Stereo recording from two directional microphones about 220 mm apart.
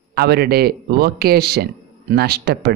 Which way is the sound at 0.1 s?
45° right (ahead or behind).